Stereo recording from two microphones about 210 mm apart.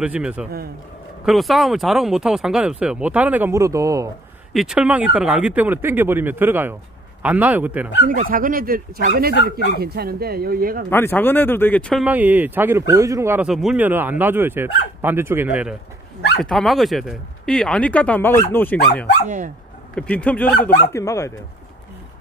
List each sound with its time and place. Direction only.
0.0 s speech: 5° right (ahead or behind)
4.6 s speech: 5° right (ahead or behind)
8.1 s speech: 40° right (ahead or behind)
10.9 s speech: 10° left (ahead or behind)
12.0 s speech: 10° right (ahead or behind); by 18.8 s 10° left (ahead or behind)
19.2 s speech: 40° right (ahead or behind)
20.0 s speech: 5° left (ahead or behind)